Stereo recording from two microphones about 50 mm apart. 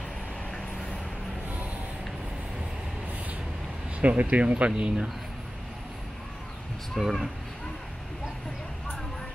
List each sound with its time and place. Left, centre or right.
4.0 s speech: right
7.0 s speech: centre